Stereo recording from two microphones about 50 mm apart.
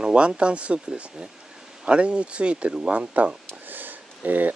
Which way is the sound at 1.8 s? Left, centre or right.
Right.